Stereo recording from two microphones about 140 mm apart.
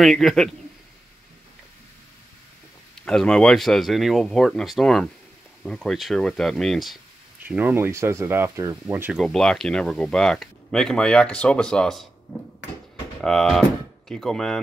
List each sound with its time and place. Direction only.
0.0 s speech: centre (ahead or behind)
3.1 s speech: 5° left (ahead or behind)
7.4 s speech: 15° right (ahead or behind)
9.2 s speech: 5° left (ahead or behind)